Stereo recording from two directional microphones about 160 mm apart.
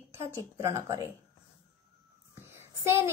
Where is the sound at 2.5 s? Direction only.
15° right (ahead or behind).